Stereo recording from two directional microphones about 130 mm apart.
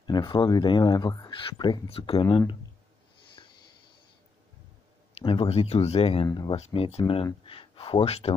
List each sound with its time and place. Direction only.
0.0 s speech: 35° left (ahead or behind)
5.2 s speech: 45° left (ahead or behind)
6.2 s speech: 30° left (ahead or behind)
6.5 s speech: 50° left (ahead or behind)